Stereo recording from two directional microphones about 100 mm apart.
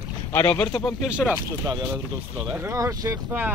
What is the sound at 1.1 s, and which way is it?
Speech, 10° right (ahead or behind).